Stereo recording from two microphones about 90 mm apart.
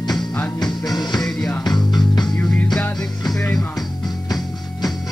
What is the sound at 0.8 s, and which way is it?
Music, 50° left (ahead or behind).